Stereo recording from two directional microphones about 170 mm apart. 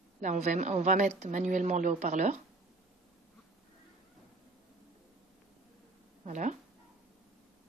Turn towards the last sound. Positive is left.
turn(degrees=-45)  # may be behind; listen again after turning